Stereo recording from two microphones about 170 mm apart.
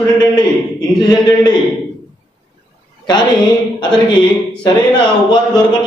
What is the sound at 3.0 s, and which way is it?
A woman's voice, 25° left (ahead or behind).